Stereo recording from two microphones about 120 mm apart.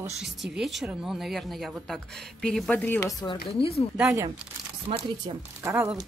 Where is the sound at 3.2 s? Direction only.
45° left (ahead or behind).